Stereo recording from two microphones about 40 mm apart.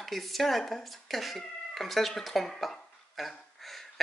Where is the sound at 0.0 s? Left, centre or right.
Centre.